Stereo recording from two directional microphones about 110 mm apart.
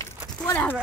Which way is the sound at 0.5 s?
15° left (ahead or behind).